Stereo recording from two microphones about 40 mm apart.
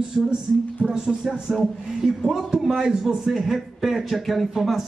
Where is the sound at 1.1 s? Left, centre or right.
Centre.